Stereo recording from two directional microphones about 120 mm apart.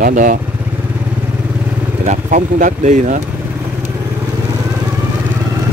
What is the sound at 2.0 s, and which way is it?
Speech, 90° right.